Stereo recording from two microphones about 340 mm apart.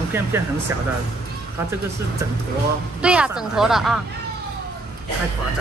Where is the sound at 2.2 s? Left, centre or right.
Centre.